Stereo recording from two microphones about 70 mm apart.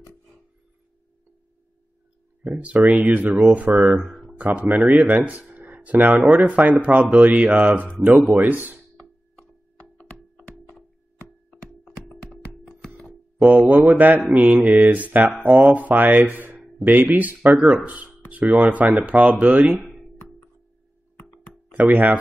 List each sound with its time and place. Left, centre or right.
2.6 s speech: centre
3.7 s speech: centre
4.4 s speech: centre
9.8 s music: left
13.4 s speech: right
17.6 s speech: centre
19.8 s a sound: centre
21.7 s speech: right